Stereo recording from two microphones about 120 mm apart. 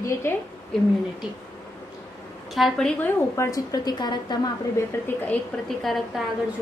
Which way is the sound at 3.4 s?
30° left (ahead or behind).